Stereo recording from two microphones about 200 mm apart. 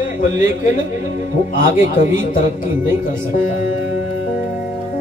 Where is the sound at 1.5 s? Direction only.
40° left (ahead or behind).